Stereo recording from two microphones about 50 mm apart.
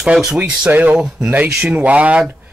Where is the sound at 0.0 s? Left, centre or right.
Centre.